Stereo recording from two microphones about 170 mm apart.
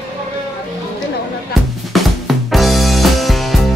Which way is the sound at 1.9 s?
Centre (ahead or behind).